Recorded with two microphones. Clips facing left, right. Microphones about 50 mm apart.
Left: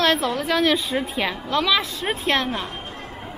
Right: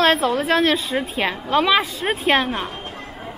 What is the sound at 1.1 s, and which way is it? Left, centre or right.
Speech, centre.